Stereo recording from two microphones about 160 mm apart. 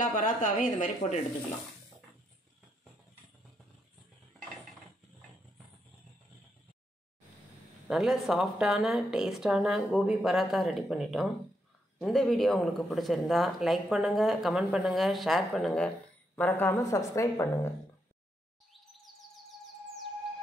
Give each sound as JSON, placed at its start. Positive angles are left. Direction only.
{"t": 0.0, "sound": "speech", "side_deg": 55}
{"t": 7.9, "sound": "a woman's voice", "side_deg": 0}